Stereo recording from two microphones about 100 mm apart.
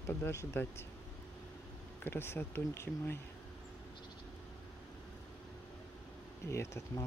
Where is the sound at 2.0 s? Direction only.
25° left (ahead or behind).